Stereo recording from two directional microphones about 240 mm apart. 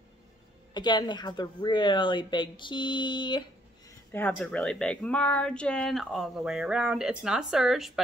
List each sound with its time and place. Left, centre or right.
0.7 s a woman's voice: centre
4.1 s speech: centre